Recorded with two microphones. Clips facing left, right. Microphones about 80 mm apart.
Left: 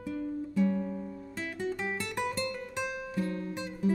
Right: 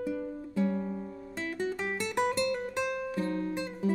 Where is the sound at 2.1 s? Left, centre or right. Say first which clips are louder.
Right 5 dB; right.